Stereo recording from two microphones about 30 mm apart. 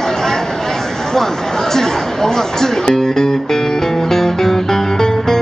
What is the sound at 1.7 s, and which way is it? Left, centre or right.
Speech, centre.